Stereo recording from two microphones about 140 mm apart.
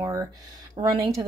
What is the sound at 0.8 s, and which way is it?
Speech, 35° right (ahead or behind).